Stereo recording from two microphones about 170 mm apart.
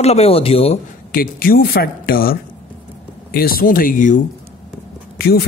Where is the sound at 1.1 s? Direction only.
60° left (ahead or behind).